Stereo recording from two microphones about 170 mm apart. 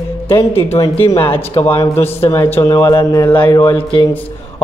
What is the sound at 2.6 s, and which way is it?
A man's voice, 25° left (ahead or behind).